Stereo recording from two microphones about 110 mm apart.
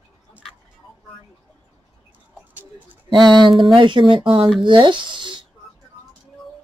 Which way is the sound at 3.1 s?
45° right (ahead or behind).